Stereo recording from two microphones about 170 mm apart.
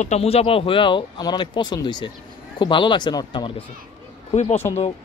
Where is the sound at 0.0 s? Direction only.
40° left (ahead or behind).